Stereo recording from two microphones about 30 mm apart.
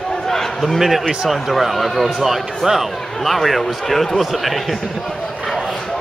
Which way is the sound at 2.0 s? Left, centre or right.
Centre.